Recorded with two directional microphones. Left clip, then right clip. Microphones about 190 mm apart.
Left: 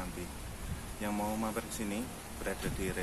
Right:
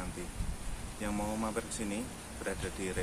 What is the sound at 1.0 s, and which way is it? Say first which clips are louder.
Speech: left 1 dB; centre (ahead or behind).